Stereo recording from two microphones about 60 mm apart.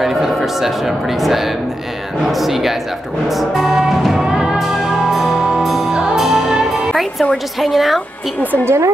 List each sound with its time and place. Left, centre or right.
0.0 s speech: centre
3.3 s music: centre
7.6 s speech: centre
8.6 s speech: right